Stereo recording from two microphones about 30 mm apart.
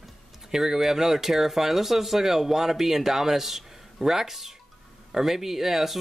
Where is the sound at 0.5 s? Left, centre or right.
Centre.